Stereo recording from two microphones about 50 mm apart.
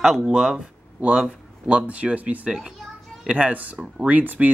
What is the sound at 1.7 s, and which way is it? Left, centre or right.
Speech, right.